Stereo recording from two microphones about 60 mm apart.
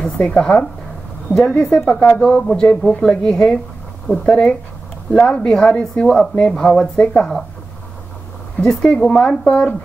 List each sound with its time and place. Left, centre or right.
0.0 s speech: centre
1.3 s speech: right
1.9 s speech: centre
8.6 s speech: centre